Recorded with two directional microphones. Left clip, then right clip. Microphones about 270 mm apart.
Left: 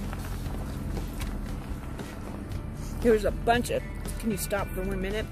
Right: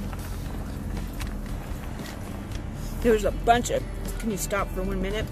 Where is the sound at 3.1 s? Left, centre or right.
Centre.